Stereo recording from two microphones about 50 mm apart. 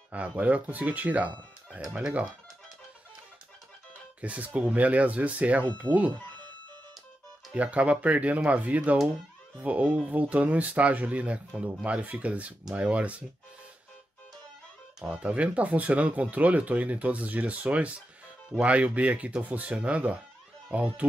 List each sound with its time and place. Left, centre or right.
0.1 s speech: right
4.2 s speech: right
7.5 s speech: right
15.1 s speech: right